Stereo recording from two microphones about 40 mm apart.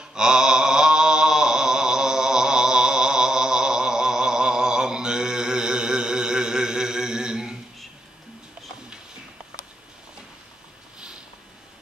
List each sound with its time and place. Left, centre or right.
0.1 s mantra: centre